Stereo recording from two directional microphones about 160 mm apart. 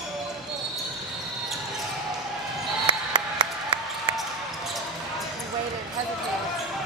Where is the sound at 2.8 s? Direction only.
30° right (ahead or behind).